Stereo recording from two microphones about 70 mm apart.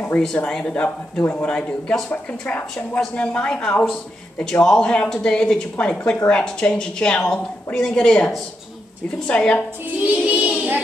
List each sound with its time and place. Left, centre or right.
0.4 s a man's voice: centre
0.8 s a man's voice: left
9.3 s a man's voice: centre
10.1 s child singing: centre